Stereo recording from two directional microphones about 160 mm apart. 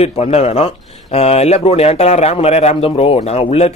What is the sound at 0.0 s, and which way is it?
Speech, 40° left (ahead or behind).